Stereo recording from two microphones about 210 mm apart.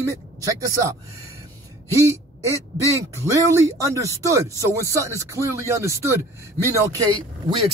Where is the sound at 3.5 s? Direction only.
15° right (ahead or behind).